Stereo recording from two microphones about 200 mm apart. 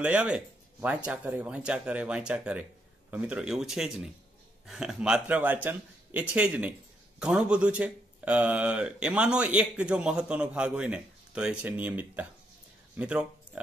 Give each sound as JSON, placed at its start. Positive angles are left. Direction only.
{"t": 0.0, "sound": "speech", "side_deg": -5}